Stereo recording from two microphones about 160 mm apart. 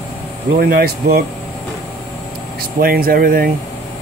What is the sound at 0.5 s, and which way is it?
Speech, 65° right (ahead or behind).